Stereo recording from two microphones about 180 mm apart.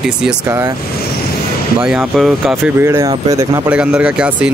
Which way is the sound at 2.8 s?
15° right (ahead or behind).